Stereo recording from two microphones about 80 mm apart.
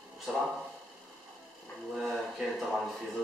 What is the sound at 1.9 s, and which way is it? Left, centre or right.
Speech, centre.